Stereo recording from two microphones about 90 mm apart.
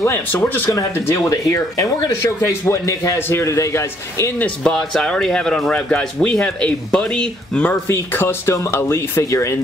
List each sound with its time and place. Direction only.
0.0 s speech: 30° left (ahead or behind)
1.1 s a man's voice: 35° left (ahead or behind)
4.4 s speech: 10° left (ahead or behind)
7.7 s speech: 25° left (ahead or behind)